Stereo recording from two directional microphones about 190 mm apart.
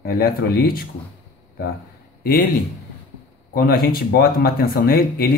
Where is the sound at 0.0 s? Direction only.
55° left (ahead or behind).